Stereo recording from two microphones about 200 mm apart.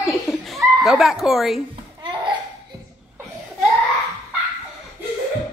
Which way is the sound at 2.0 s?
25° right (ahead or behind).